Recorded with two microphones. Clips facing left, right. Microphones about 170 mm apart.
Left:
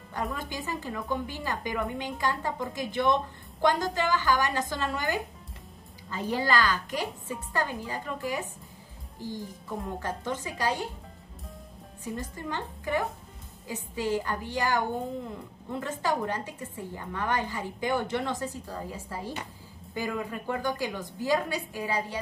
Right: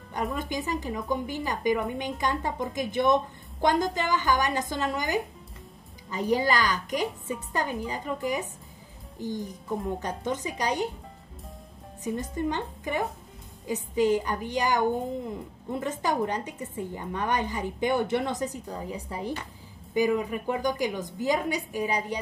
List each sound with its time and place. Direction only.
0.1 s a woman's voice: 20° right (ahead or behind)
12.0 s a woman's voice: 20° right (ahead or behind)